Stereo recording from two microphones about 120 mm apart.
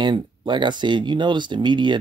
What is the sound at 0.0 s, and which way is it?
Speech, 40° right (ahead or behind).